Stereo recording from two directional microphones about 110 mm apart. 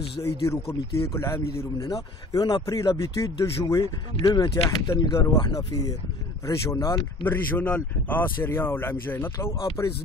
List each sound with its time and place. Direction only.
0.2 s speech: 35° left (ahead or behind)
1.9 s speech: 40° left (ahead or behind)
7.2 s speech: 15° left (ahead or behind)